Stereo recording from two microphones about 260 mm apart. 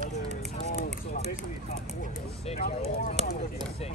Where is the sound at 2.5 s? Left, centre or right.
Left.